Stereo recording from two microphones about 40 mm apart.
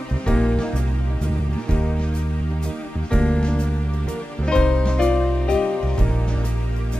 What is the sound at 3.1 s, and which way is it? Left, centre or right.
Music, left.